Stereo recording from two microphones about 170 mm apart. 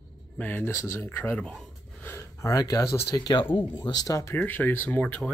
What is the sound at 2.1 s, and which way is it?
Speech, 20° left (ahead or behind).